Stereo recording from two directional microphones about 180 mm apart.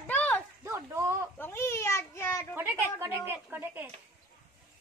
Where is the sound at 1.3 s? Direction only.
15° left (ahead or behind).